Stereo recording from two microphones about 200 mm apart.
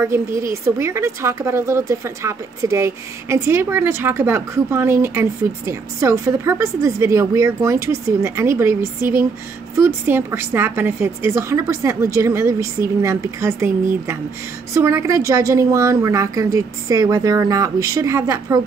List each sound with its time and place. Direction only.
0.4 s a woman's voice: 15° right (ahead or behind)
14.7 s a woman's voice: 15° right (ahead or behind)